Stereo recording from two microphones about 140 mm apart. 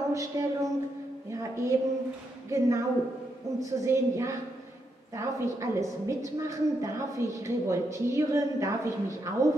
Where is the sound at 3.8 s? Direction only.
20° right (ahead or behind).